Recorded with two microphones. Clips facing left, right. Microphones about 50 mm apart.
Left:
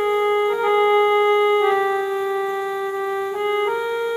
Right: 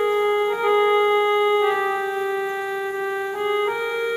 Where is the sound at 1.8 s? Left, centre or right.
Centre.